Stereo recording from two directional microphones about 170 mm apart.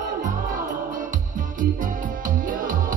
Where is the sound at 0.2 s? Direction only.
50° right (ahead or behind).